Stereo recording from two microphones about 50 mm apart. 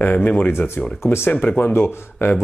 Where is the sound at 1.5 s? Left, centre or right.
Left.